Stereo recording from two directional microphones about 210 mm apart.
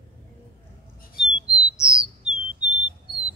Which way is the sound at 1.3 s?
20° left (ahead or behind).